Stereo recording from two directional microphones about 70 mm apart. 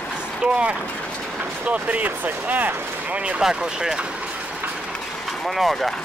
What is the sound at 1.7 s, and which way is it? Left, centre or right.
Speech, centre.